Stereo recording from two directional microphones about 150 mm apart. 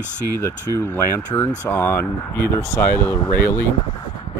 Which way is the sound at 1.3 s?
15° left (ahead or behind).